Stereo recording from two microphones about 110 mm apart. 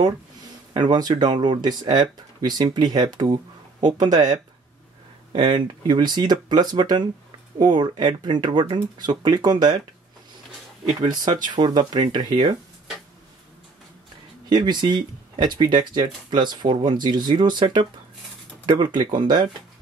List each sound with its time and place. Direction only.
0.7 s speech: 40° right (ahead or behind)
5.3 s speech: 45° right (ahead or behind)
11.0 s speech: 40° right (ahead or behind)
14.5 s speech: 45° right (ahead or behind)